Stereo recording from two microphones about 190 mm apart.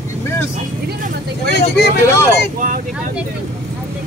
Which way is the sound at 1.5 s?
60° left (ahead or behind).